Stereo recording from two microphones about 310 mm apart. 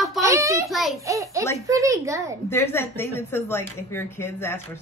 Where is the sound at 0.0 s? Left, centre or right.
Centre.